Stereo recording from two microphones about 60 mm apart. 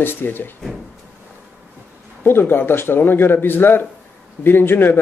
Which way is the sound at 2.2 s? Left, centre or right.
Left.